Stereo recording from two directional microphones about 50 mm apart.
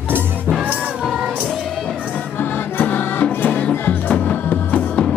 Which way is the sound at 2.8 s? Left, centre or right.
Left.